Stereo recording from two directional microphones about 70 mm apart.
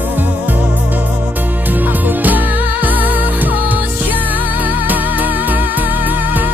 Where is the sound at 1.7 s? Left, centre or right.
Right.